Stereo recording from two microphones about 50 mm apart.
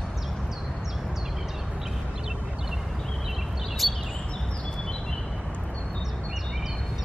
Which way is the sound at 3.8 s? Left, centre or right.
Centre.